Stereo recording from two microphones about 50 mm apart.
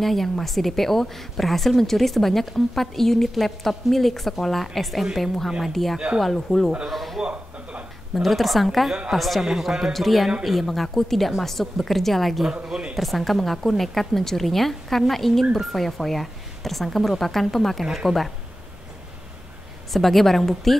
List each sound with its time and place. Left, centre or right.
0.0 s a woman's voice: centre
7.2 s a sound: right
8.1 s a woman's voice: centre
9.4 s speech: centre
9.9 s a woman's voice: centre
19.9 s a woman's voice: centre